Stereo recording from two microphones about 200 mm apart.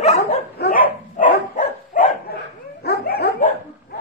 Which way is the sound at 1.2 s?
40° left (ahead or behind).